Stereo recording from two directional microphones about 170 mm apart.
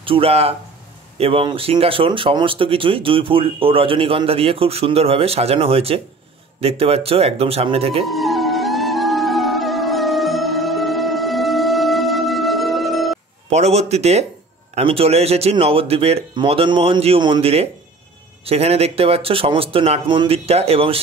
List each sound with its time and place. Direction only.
0.0 s speech: 35° right (ahead or behind)
8.0 s music: centre (ahead or behind)
13.5 s speech: 40° right (ahead or behind)